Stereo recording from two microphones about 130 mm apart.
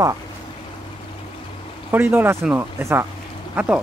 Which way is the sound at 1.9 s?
15° right (ahead or behind).